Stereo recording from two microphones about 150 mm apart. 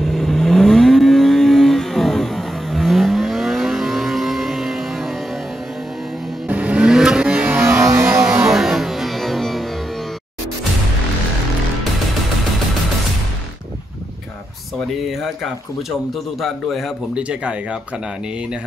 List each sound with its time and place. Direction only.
0.0 s vehicle: centre (ahead or behind)
6.4 s vehicle: 10° right (ahead or behind)
7.9 s music: 20° right (ahead or behind)
8.3 s music: 5° right (ahead or behind)
16.3 s speech: centre (ahead or behind)